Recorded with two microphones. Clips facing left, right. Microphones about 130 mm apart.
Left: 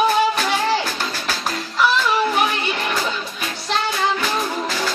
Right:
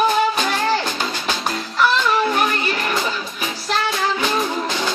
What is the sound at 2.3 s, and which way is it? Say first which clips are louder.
Music: right 1 dB; 5° left (ahead or behind).